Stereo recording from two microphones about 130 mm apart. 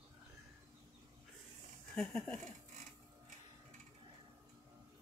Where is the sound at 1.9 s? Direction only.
5° left (ahead or behind).